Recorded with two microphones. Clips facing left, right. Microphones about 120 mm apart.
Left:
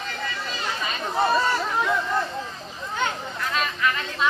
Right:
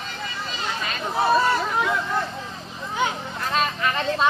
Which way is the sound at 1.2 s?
5° right (ahead or behind).